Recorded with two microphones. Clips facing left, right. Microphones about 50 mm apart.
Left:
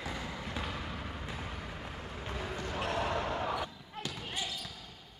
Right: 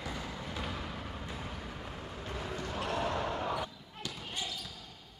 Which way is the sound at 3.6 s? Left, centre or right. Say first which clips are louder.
Left 1 dB; left.